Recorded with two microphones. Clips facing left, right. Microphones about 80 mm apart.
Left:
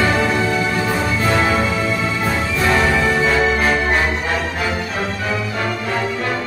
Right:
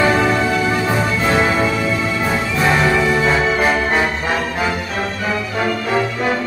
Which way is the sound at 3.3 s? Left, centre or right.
Centre.